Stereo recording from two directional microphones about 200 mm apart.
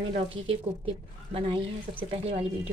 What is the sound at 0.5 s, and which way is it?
Speech, 30° right (ahead or behind).